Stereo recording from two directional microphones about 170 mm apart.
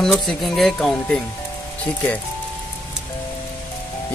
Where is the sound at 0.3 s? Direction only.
Centre (ahead or behind).